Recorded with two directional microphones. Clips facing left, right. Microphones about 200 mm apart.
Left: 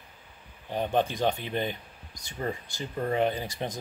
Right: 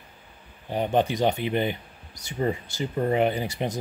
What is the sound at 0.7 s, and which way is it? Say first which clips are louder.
Speech: right 4 dB; 15° right (ahead or behind).